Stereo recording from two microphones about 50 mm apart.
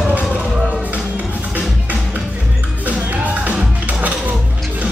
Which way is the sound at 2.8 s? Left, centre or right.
Right.